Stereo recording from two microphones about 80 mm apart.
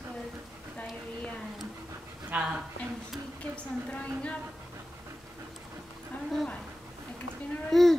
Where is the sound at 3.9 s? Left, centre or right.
Centre.